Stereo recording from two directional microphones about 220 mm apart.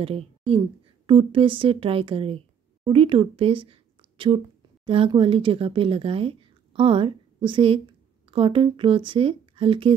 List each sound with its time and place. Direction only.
0.0 s a woman's voice: 25° right (ahead or behind)